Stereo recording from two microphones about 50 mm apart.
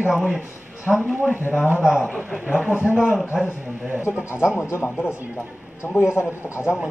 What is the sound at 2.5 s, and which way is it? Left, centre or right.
Speech, right.